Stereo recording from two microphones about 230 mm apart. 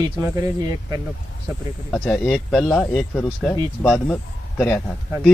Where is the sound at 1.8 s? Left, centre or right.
Centre.